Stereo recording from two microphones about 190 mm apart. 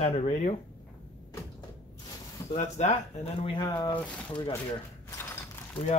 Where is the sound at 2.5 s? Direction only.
40° left (ahead or behind).